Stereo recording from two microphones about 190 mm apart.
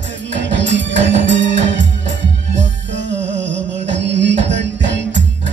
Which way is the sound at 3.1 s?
70° right (ahead or behind).